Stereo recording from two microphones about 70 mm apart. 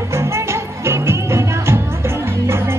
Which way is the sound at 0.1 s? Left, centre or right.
Right.